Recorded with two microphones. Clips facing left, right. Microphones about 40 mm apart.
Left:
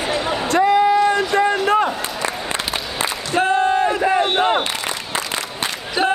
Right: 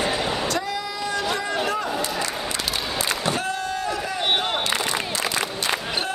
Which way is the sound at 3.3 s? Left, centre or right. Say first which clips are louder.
Left 10 dB; left.